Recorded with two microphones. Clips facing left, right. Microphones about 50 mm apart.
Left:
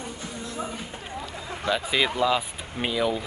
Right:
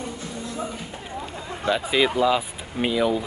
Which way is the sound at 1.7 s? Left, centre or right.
Centre.